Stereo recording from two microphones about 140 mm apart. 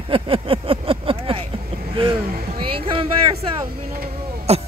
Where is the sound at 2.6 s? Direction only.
40° right (ahead or behind).